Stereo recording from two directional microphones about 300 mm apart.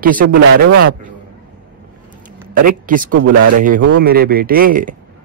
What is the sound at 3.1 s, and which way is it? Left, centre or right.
Speech, right.